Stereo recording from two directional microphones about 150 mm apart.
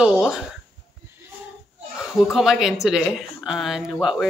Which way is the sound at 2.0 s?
5° right (ahead or behind).